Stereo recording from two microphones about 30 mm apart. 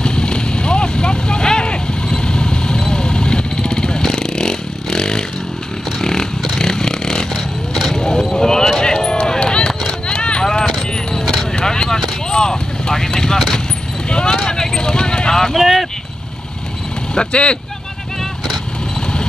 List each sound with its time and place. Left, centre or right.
0.0 s vehicle: left
8.4 s a sound: left
9.8 s clip-clop: left
10.4 s a sound: centre
10.8 s vehicle: left
14.0 s a sound: left
14.3 s clip-clop: left
15.5 s clip-clop: centre
17.1 s vehicle: left